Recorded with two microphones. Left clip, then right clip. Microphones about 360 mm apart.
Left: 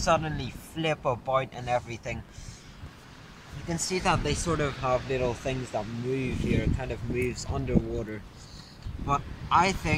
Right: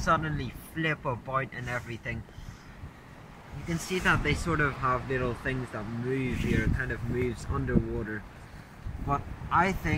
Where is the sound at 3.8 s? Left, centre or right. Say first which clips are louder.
Even; centre.